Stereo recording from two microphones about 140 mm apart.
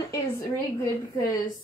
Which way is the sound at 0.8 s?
25° left (ahead or behind).